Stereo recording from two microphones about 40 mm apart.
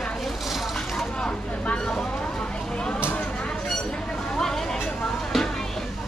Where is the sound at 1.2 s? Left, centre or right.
Left.